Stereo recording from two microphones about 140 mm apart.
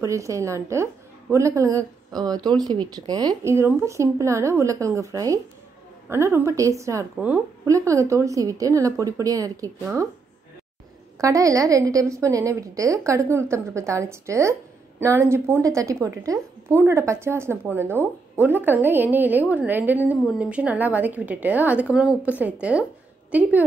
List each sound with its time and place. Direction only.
0.0 s speech: 20° right (ahead or behind)
11.1 s a woman's voice: 25° right (ahead or behind)